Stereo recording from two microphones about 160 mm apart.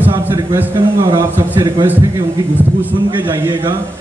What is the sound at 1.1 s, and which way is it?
Speech, 25° right (ahead or behind).